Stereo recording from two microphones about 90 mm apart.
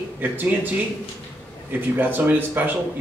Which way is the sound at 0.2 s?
20° right (ahead or behind).